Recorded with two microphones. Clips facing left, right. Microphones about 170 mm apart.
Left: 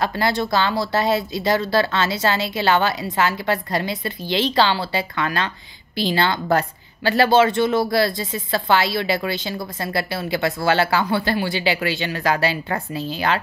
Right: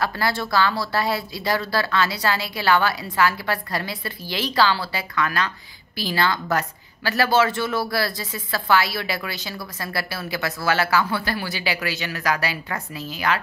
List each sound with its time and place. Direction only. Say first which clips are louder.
0.0 s a woman's voice: left 3 dB; 20° left (ahead or behind)